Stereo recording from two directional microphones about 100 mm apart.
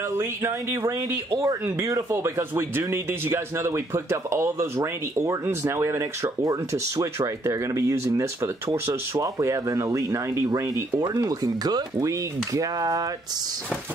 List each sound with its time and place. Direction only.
0.2 s speech: 30° right (ahead or behind)